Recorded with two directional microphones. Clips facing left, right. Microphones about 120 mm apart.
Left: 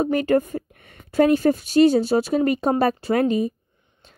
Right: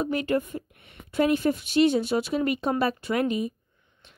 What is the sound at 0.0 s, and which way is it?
A woman's voice, 40° left (ahead or behind).